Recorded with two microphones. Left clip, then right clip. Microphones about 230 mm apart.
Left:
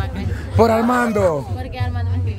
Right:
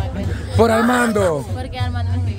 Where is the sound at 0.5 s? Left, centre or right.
Centre.